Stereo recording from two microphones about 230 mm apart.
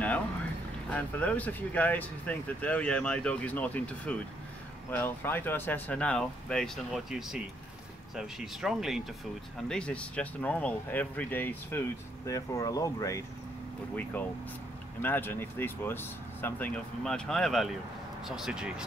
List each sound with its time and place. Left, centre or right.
0.8 s speech: centre
15.0 s speech: centre